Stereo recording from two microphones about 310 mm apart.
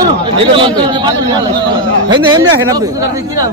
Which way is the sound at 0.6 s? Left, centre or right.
Centre.